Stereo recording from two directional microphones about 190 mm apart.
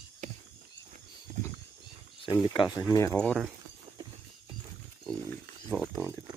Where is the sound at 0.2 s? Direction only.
40° right (ahead or behind).